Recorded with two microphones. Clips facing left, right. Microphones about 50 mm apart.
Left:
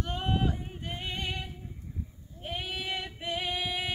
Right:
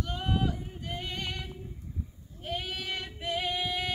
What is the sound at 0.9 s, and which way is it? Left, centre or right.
Female singing, left.